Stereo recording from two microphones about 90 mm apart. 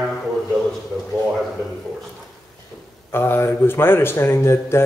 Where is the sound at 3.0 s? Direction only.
25° left (ahead or behind).